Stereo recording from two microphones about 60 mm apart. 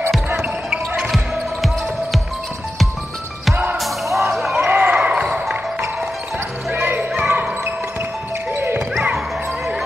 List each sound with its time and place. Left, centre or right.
0.4 s basketball bounce: centre
3.7 s music: centre
4.3 s basketball bounce: centre
4.6 s basketball bounce: right
4.9 s basketball bounce: centre
6.7 s basketball bounce: right
8.5 s music: right